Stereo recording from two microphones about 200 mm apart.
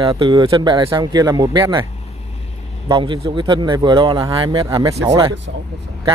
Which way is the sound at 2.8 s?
25° right (ahead or behind).